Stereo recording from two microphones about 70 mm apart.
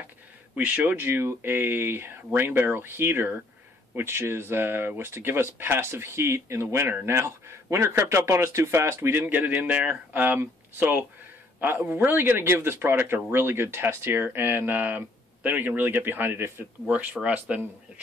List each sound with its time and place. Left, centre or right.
0.6 s speech: right
17.2 s speech: centre